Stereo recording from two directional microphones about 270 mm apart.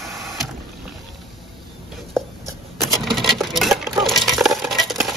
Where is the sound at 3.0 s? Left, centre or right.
Centre.